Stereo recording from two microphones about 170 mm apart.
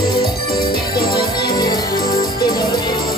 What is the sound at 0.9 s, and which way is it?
Music, 25° left (ahead or behind).